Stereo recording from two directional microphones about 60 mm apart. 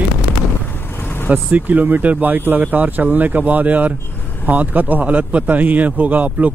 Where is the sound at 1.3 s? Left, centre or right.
Right.